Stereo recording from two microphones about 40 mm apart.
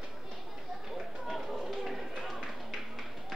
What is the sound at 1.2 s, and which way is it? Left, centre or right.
Run, centre.